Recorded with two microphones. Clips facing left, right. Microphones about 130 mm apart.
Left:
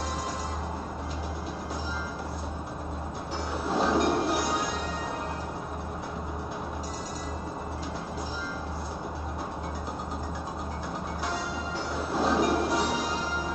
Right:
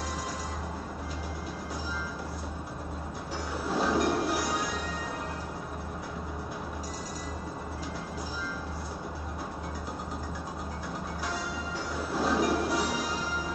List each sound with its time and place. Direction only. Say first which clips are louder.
3.6 s a sound: left 2 dB; 25° left (ahead or behind)
4.4 s music: left 2 dB; 25° left (ahead or behind)
12.0 s train: left 2 dB; 25° left (ahead or behind)
12.4 s music: left 2 dB; 25° left (ahead or behind)